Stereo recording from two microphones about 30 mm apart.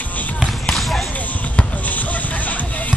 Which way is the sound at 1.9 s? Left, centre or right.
Left.